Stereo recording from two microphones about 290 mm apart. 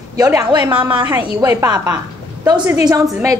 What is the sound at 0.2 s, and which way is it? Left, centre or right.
A woman's voice, centre.